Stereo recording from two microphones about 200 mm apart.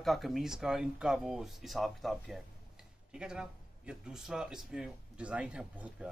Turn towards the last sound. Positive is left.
turn(degrees=-5)  # may be behind; listen again after turning